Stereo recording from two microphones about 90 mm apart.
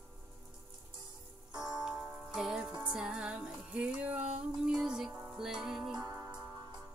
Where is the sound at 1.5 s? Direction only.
50° right (ahead or behind).